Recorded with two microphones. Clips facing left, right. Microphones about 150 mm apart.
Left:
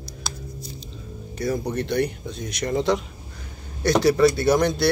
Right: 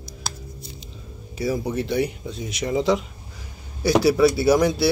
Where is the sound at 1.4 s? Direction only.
5° right (ahead or behind).